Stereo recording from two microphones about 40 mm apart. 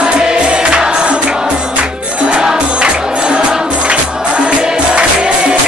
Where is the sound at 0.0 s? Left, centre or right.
Right.